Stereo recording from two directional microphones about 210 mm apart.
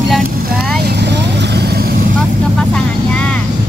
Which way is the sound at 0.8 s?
55° right (ahead or behind).